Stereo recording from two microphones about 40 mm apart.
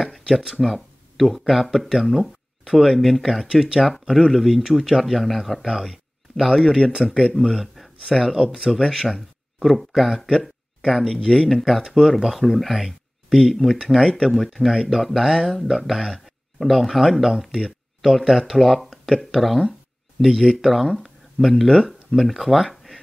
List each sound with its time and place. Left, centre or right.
0.0 s a sound: centre
0.6 s speech: centre
3.4 s speech: centre
4.1 s speech: centre